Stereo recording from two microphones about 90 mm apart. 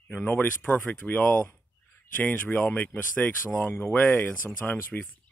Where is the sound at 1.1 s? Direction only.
20° left (ahead or behind).